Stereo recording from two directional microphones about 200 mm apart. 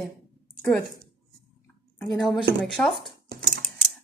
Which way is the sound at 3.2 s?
50° right (ahead or behind).